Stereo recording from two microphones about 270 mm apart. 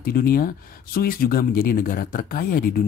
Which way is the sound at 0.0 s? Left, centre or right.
Left.